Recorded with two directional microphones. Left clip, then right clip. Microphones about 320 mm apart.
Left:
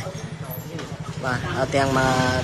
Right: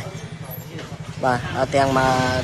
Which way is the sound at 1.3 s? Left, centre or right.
Centre.